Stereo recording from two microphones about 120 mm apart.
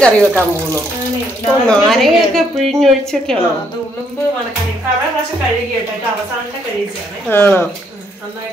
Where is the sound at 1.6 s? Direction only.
5° left (ahead or behind).